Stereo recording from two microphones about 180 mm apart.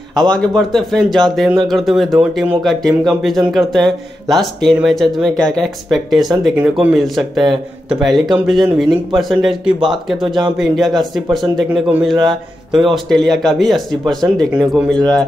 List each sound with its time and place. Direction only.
0.2 s a man's voice: 5° left (ahead or behind)
10.2 s speech: 25° right (ahead or behind)
10.6 s a man's voice: centre (ahead or behind)